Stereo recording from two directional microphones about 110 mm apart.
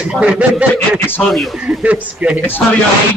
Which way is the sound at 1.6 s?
10° right (ahead or behind).